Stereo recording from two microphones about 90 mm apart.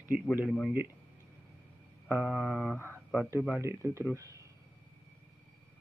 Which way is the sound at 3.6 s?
30° right (ahead or behind).